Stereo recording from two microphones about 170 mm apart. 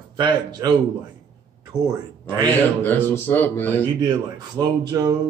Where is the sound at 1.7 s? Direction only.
15° left (ahead or behind).